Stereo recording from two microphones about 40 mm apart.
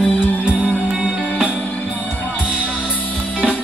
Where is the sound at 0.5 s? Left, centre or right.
Right.